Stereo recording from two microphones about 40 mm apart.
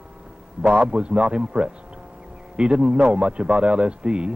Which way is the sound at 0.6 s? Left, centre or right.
Right.